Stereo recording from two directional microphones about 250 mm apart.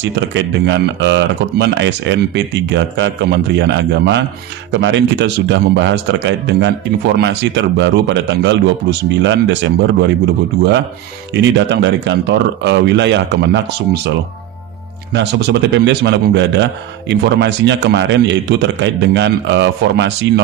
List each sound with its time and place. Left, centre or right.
0.0 s speech: right
11.3 s speech: right
15.1 s speech: right